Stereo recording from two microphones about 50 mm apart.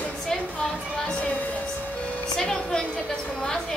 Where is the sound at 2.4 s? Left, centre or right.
Centre.